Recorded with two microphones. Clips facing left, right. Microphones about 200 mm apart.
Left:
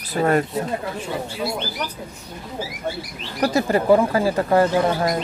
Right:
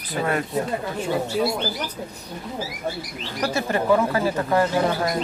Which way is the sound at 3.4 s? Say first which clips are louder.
Left 4 dB; 35° left (ahead or behind).